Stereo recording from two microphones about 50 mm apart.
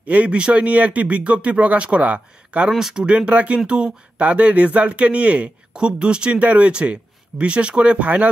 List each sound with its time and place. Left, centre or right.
0.1 s speech: right
2.7 s speech: centre
3.0 s speech: right